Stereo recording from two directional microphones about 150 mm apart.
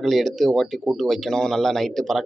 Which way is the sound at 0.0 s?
Centre (ahead or behind).